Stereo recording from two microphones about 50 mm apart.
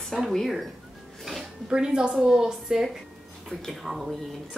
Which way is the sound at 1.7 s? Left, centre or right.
Centre.